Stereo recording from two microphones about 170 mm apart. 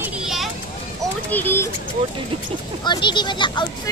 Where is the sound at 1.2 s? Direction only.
10° left (ahead or behind).